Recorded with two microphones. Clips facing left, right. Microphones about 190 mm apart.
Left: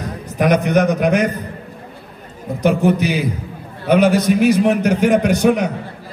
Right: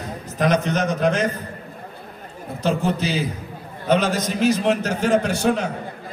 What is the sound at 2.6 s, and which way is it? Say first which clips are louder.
A man's voice: left 7 dB; 15° left (ahead or behind).